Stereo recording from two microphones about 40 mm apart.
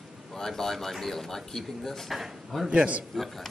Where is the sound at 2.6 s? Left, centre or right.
Right.